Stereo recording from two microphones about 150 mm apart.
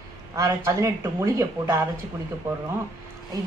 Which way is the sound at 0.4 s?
20° right (ahead or behind).